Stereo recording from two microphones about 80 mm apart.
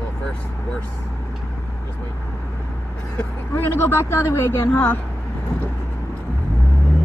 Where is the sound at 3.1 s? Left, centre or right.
Left.